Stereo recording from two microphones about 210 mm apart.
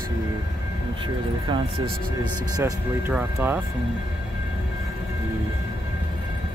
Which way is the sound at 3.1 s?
10° right (ahead or behind).